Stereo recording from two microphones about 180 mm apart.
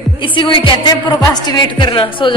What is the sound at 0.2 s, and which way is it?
A woman's voice, 25° left (ahead or behind).